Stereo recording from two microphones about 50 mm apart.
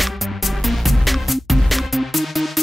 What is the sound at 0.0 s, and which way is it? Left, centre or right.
Music, centre.